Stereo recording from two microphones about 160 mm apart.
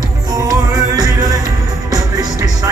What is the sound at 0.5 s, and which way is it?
Music, 25° right (ahead or behind).